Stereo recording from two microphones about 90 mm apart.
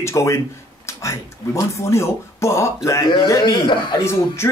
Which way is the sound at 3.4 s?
60° left (ahead or behind).